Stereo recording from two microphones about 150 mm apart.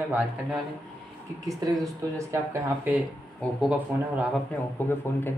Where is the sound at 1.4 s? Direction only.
20° right (ahead or behind).